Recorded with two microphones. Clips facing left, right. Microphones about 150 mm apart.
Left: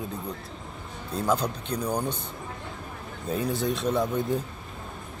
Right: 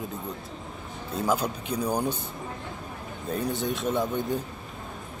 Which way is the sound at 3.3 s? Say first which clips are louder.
Left 1 dB; centre (ahead or behind).